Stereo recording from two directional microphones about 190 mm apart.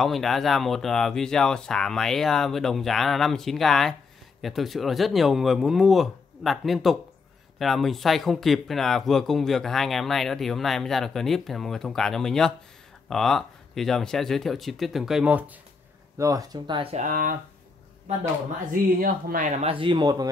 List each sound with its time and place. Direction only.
0.0 s speech: centre (ahead or behind)
16.2 s speech: 20° right (ahead or behind)
16.9 s speech: 45° right (ahead or behind)
18.9 s speech: 50° right (ahead or behind)
19.7 s speech: 25° right (ahead or behind)